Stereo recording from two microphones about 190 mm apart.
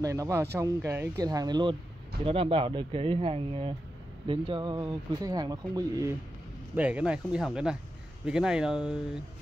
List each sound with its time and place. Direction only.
0.0 s speech: 15° right (ahead or behind)
6.7 s speech: 5° right (ahead or behind)